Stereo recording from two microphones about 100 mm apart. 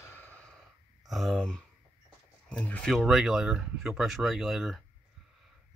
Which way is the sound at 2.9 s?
5° right (ahead or behind).